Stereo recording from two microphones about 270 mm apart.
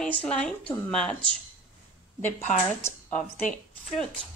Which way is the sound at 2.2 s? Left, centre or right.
Left.